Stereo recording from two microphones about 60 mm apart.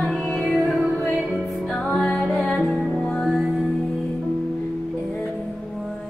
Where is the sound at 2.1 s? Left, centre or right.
Centre.